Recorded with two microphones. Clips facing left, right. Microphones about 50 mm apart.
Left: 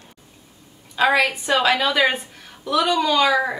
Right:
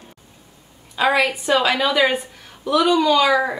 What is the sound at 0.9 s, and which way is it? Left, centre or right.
A woman's voice, centre.